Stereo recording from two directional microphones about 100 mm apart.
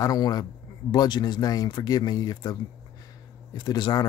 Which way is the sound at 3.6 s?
50° left (ahead or behind).